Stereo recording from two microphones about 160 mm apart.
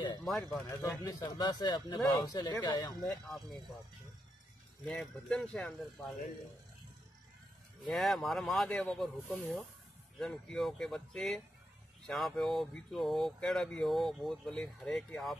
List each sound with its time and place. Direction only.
0.2 s speech: centre (ahead or behind)
1.0 s speech: 25° left (ahead or behind)
3.0 s speech: centre (ahead or behind)
4.8 s speech: centre (ahead or behind)
7.8 s speech: centre (ahead or behind)